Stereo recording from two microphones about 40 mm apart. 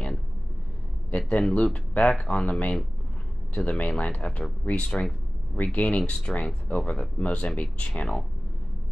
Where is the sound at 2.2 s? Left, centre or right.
Left.